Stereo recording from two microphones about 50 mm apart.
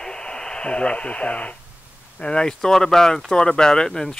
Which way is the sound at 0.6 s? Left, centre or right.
Left.